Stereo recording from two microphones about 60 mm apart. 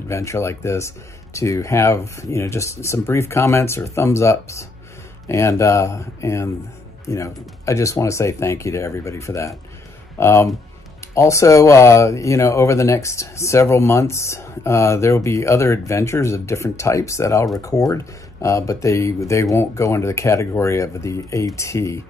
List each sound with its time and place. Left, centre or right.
0.1 s speech: left
17.6 s speech: left
17.9 s speech: left